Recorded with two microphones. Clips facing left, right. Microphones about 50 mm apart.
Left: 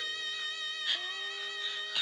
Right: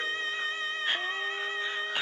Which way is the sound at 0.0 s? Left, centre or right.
Right.